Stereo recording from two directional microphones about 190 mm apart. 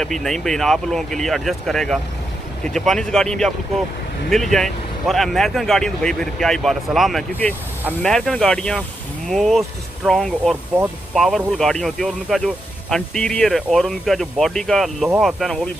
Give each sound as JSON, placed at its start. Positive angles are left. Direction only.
{"t": 0.0, "sound": "speech", "side_deg": 0}